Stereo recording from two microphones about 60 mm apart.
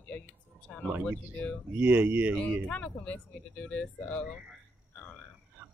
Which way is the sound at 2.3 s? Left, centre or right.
Left.